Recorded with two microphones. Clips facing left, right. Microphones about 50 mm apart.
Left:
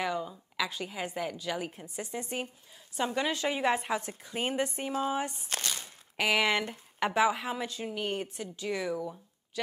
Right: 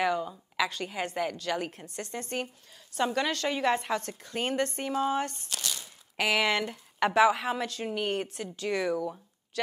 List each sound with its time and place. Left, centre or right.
0.2 s a woman's voice: centre
0.7 s a woman's voice: centre
5.5 s a sound: left
6.1 s speech: centre